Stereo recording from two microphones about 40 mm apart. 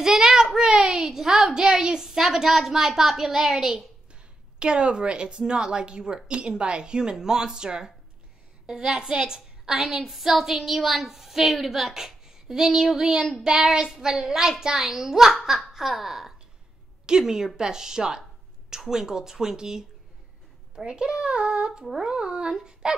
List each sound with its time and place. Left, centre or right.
0.0 s child singing: centre
1.6 s a woman's voice: right
4.1 s a woman's voice: right
14.7 s a woman's voice: centre
20.8 s a woman's voice: right
22.1 s speech: right